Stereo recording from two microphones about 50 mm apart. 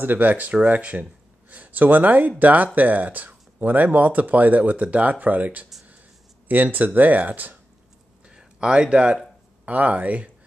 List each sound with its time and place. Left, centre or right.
0.0 s speech: right
8.3 s a sound: centre
9.7 s speech: right